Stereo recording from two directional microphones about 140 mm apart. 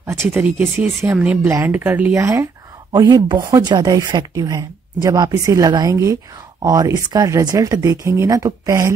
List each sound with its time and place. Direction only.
0.0 s speech: 20° right (ahead or behind)